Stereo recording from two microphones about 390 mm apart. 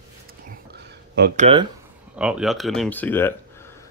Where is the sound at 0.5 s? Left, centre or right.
Right.